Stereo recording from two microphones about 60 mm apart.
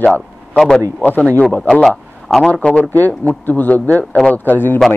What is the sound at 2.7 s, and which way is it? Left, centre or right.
Speech, left.